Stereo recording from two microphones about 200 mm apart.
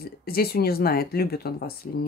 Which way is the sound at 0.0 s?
50° left (ahead or behind).